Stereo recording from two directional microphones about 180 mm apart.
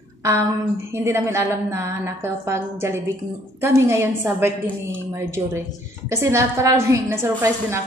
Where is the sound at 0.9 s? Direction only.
15° right (ahead or behind).